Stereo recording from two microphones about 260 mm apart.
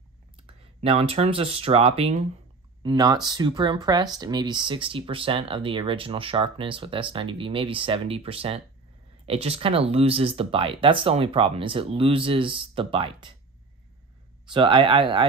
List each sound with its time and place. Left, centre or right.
0.7 s speech: right
14.5 s speech: centre